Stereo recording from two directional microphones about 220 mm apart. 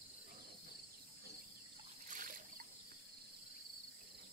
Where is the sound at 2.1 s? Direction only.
40° right (ahead or behind).